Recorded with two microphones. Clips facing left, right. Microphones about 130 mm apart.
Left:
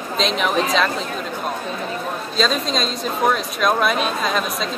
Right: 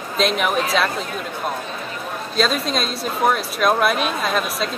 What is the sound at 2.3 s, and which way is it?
Speech, 5° right (ahead or behind).